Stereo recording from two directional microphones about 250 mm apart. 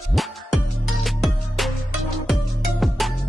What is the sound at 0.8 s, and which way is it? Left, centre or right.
Music, centre.